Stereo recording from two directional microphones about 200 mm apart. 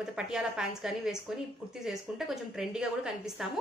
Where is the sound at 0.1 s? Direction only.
5° right (ahead or behind).